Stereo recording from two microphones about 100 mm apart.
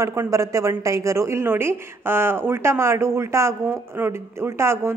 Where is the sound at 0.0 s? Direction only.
30° right (ahead or behind).